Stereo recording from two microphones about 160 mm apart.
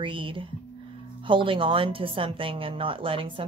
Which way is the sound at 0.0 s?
30° right (ahead or behind).